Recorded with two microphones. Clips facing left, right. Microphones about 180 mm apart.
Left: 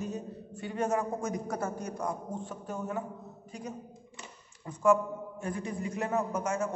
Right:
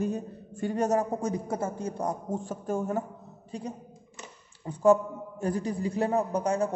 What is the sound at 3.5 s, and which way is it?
A man's voice, 30° right (ahead or behind).